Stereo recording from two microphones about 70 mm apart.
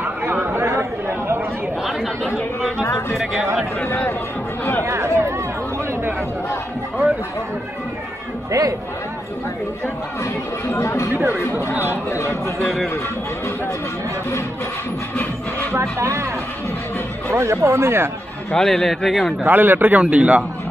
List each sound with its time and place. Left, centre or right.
0.0 s chatter: right
1.8 s chatter: centre
2.8 s music: left
3.8 s chatter: left
4.8 s chatter: right
8.5 s speech: right
10.2 s speech: left
11.1 s speech: right
12.1 s speech: left
12.5 s speech: centre
15.7 s speech: right
17.3 s speech: right
18.5 s speech: centre
19.4 s speech: right